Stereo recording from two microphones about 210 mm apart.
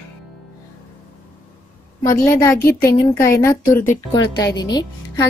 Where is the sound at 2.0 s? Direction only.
15° left (ahead or behind).